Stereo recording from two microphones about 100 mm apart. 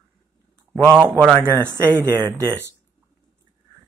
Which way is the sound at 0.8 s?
20° right (ahead or behind).